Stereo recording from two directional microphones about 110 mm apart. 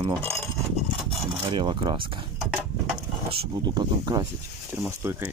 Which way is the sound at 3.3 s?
55° right (ahead or behind).